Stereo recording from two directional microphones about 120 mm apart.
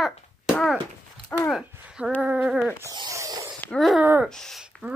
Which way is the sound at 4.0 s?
10° right (ahead or behind).